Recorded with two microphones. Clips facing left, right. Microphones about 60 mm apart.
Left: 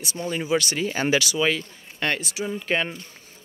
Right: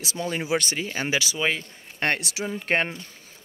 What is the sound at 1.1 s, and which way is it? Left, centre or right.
Speech, centre.